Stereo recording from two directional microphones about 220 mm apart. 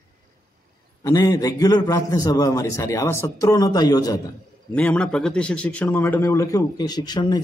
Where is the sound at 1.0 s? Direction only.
15° left (ahead or behind).